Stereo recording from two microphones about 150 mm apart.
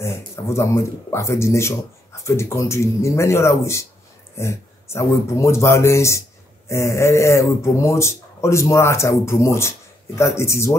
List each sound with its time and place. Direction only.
0.0 s speech: 20° left (ahead or behind)